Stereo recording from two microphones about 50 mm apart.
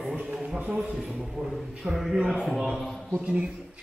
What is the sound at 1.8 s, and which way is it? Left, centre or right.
A man's voice, centre.